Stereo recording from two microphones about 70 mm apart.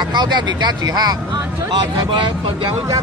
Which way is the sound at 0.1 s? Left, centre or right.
Right.